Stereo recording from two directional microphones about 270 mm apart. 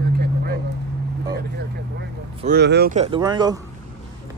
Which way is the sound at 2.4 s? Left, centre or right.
Right.